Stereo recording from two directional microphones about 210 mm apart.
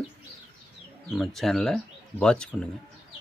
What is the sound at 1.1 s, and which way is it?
Speech, centre (ahead or behind).